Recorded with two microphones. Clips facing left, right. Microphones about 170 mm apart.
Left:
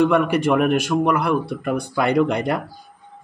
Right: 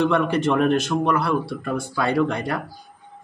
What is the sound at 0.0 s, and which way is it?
Speech, 10° left (ahead or behind).